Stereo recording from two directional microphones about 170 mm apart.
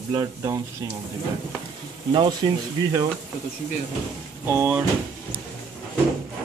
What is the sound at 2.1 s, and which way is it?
Speech, 25° right (ahead or behind).